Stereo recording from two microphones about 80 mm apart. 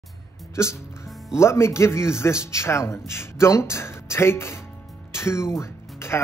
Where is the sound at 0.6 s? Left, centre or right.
Left.